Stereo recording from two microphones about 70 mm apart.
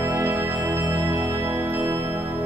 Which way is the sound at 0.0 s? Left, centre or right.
Right.